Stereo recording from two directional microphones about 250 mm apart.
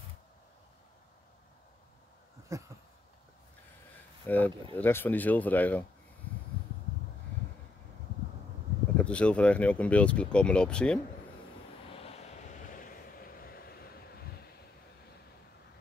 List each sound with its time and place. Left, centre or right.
2.5 s a sound: centre
4.3 s speech: centre
8.9 s speech: centre
11.9 s vehicle: left